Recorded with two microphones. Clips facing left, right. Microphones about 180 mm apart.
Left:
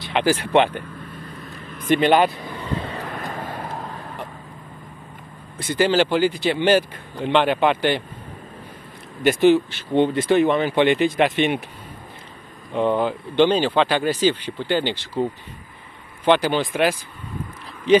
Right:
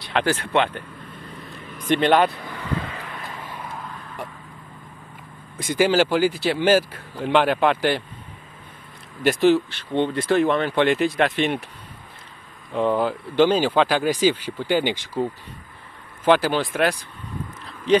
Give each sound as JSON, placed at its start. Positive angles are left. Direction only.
{"t": 0.0, "sound": "speech", "side_deg": 5}
{"t": 1.2, "sound": "vehicle", "side_deg": -10}
{"t": 1.9, "sound": "speech", "side_deg": 5}
{"t": 2.3, "sound": "vehicle", "side_deg": 20}
{"t": 5.6, "sound": "speech", "side_deg": -10}
{"t": 9.2, "sound": "speech", "side_deg": 0}
{"t": 12.7, "sound": "speech", "side_deg": 0}
{"t": 16.3, "sound": "speech", "side_deg": -5}